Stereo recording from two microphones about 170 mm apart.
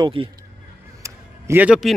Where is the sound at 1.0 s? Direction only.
15° right (ahead or behind).